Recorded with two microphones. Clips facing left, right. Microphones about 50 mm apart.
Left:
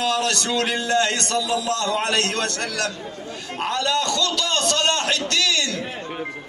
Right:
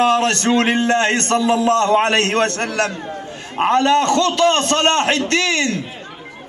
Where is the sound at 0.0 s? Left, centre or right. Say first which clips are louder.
Right 7 dB; right.